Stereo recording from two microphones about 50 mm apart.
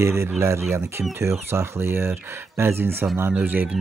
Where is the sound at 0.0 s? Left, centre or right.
Right.